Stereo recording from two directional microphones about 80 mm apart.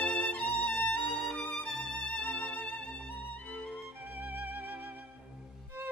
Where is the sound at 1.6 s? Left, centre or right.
Centre.